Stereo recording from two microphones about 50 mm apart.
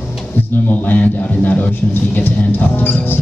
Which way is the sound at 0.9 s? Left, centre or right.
Left.